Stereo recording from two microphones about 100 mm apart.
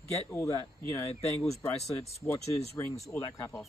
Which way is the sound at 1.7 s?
90° left.